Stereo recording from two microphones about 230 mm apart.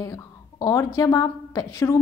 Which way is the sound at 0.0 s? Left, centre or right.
Centre.